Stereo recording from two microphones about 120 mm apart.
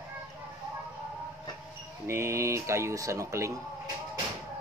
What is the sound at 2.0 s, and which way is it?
A child's voice, 20° right (ahead or behind).